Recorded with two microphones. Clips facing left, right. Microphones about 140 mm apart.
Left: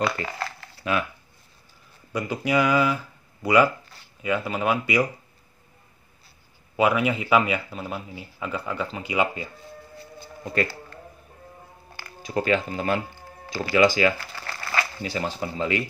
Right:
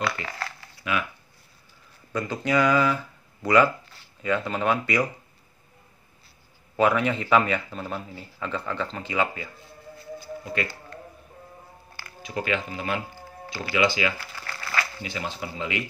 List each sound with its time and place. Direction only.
0.8 s speech: 35° left (ahead or behind)
2.1 s speech: 10° left (ahead or behind)
6.8 s speech: 10° left (ahead or behind)
10.5 s speech: 40° left (ahead or behind)
12.2 s speech: 35° left (ahead or behind)